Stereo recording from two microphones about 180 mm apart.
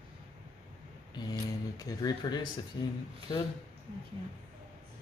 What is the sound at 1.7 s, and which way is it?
A man's voice, 20° left (ahead or behind).